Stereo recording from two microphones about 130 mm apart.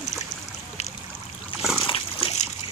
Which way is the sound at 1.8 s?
45° left (ahead or behind).